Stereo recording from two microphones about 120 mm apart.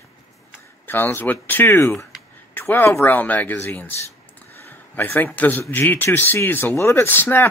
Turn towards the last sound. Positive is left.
turn(degrees=15)  # may be behind; listen again after turning